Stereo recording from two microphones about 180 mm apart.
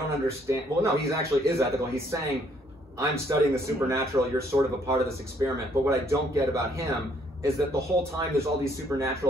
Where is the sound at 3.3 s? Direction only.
20° right (ahead or behind).